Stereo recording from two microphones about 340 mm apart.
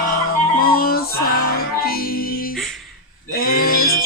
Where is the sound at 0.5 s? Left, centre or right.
Left.